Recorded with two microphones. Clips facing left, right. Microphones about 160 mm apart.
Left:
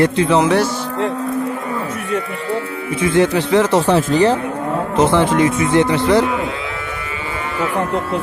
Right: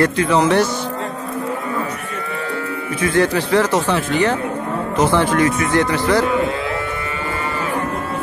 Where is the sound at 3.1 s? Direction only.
20° left (ahead or behind).